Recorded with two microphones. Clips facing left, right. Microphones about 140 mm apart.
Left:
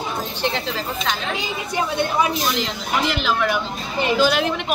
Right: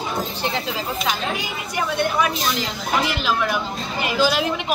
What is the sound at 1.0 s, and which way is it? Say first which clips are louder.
Speech: right 1 dB; 15° right (ahead or behind).